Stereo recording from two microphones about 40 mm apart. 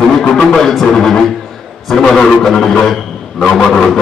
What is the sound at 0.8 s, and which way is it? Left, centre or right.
A man's voice, centre.